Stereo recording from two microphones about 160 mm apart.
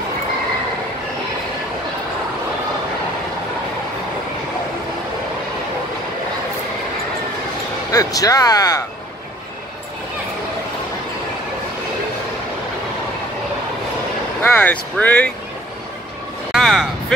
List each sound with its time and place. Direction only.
7.9 s speech: 20° left (ahead or behind)
14.4 s speech: 10° left (ahead or behind)
16.5 s a sound: centre (ahead or behind)